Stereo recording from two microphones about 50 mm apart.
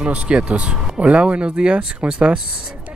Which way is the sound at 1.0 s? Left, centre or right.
Right.